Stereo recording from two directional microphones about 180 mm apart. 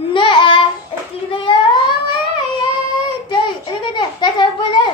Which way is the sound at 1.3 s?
30° left (ahead or behind).